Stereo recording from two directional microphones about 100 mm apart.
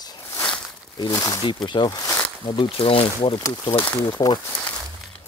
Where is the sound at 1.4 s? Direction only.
50° left (ahead or behind).